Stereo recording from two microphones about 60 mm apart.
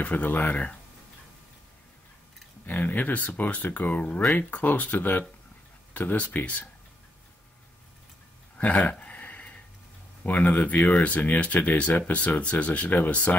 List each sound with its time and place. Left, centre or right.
0.0 s speech: left
2.6 s speech: left
8.5 s speech: left
8.9 s a sound: left
10.2 s speech: left